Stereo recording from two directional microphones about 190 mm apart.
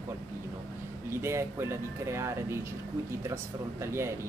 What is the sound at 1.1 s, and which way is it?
Speech, 15° right (ahead or behind).